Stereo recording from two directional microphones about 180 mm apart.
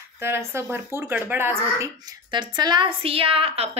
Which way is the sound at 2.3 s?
25° right (ahead or behind).